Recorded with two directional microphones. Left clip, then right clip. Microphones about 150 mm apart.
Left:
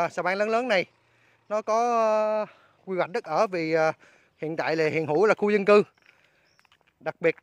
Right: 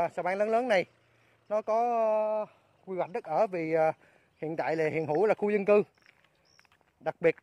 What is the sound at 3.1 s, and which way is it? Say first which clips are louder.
A man's voice: left 2 dB; 35° left (ahead or behind).